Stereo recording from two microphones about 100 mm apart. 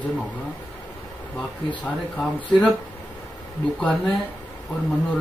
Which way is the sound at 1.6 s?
15° left (ahead or behind).